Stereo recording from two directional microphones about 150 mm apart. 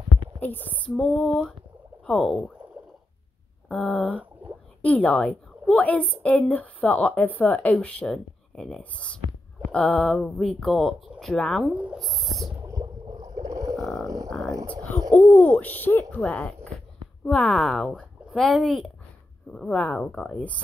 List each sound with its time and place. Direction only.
0.4 s a woman's voice: 10° left (ahead or behind)
0.9 s a woman's voice: centre (ahead or behind)
3.6 s speech: 10° left (ahead or behind)
4.1 s a sound: 10° right (ahead or behind)
4.8 s a woman's voice: 10° left (ahead or behind)
11.7 s speech: 5° right (ahead or behind)
12.6 s a sound: 20° right (ahead or behind)
13.7 s a sound: 20° left (ahead or behind)
14.8 s speech: 25° right (ahead or behind)
15.3 s a woman's voice: 10° left (ahead or behind)